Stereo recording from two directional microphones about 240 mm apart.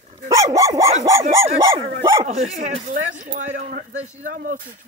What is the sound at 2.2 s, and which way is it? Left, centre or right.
Speech, right.